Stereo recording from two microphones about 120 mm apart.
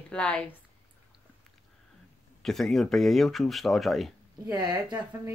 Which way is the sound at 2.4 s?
Centre (ahead or behind).